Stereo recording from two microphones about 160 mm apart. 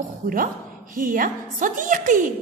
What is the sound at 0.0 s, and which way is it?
A woman's voice, 60° right (ahead or behind).